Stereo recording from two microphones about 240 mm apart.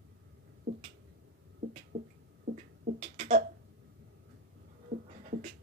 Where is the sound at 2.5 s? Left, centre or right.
Right.